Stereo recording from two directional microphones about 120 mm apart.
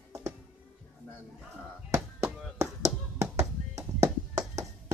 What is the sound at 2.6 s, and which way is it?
Tap, 25° right (ahead or behind).